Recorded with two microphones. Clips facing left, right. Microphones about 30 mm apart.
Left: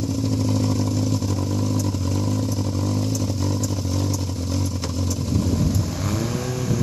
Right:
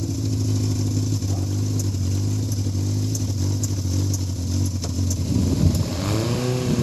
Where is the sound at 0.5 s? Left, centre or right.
Centre.